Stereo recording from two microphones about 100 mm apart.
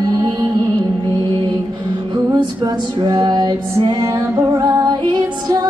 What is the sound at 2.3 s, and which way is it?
Female singing, 45° right (ahead or behind).